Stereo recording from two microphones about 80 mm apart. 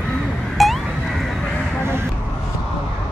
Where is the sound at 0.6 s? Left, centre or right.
Centre.